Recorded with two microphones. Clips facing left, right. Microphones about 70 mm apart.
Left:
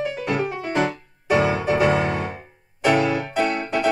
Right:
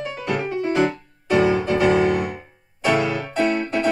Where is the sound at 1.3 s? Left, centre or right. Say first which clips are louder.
Right 2 dB; left.